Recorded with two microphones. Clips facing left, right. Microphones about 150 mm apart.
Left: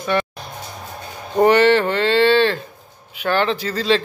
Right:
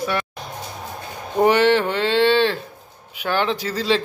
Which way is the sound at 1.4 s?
10° right (ahead or behind).